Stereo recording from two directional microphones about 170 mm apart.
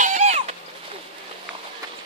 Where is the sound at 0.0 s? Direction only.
45° right (ahead or behind).